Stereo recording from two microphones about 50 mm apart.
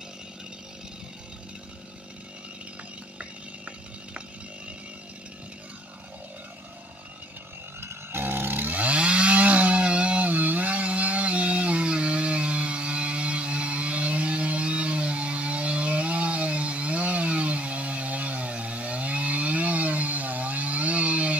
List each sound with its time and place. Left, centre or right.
7.8 s chainsaw: right